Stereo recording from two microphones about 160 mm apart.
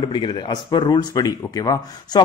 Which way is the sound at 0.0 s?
30° left (ahead or behind).